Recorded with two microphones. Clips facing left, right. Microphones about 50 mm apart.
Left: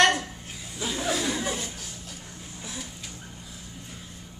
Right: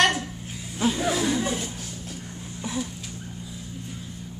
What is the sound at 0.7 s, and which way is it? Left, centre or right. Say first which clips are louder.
Music: right 7 dB; right.